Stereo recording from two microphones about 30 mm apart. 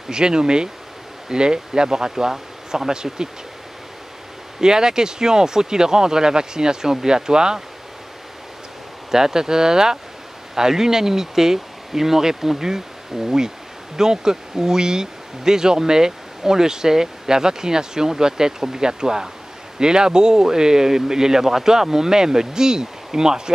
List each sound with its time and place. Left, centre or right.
0.1 s speech: right
4.6 s speech: right
9.1 s speech: centre